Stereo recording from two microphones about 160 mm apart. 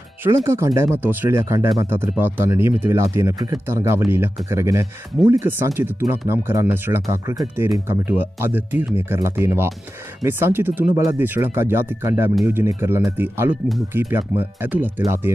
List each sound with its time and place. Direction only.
0.2 s speech: 15° right (ahead or behind)